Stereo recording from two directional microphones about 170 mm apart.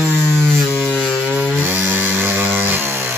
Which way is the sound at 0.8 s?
10° right (ahead or behind).